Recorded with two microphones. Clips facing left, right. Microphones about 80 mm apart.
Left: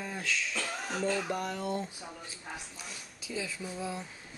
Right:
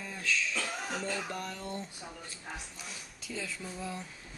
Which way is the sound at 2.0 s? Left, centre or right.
Centre.